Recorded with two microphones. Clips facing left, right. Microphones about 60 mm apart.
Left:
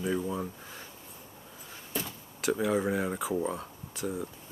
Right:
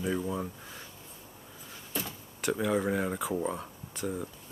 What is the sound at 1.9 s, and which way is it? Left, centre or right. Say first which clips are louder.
Speech: left 1 dB; centre.